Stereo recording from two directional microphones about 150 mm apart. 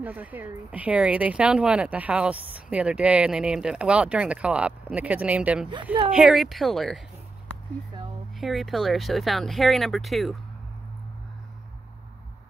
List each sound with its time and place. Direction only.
0.0 s speech: 10° right (ahead or behind)
8.4 s speech: centre (ahead or behind)